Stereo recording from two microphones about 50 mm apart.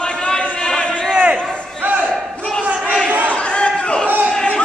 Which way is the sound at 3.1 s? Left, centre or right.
Right.